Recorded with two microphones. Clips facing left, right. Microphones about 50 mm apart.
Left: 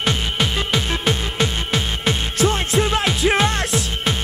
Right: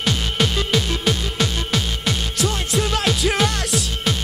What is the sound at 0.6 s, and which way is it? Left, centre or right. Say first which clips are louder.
Music: even; left.